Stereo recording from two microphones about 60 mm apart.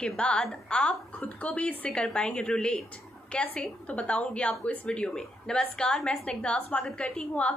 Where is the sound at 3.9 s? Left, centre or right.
Left.